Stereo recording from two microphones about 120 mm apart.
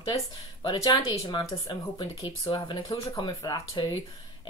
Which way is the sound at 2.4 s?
45° left (ahead or behind).